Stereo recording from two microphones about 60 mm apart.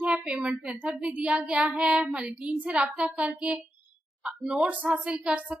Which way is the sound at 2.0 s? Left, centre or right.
Centre.